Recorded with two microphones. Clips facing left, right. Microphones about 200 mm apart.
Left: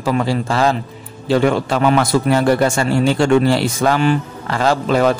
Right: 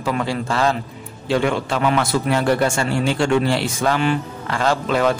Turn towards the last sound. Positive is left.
turn(degrees=40)  # may be behind; listen again after turning